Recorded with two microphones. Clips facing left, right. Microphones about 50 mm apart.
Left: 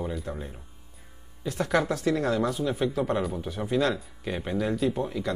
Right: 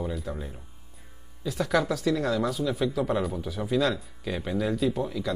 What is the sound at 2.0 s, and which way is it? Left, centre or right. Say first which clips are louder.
Speech: left 1 dB; left.